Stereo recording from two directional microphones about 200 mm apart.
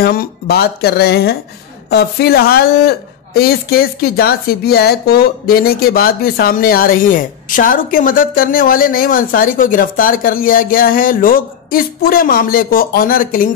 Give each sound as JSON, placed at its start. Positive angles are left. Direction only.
{"t": 0.0, "sound": "speech", "side_deg": 50}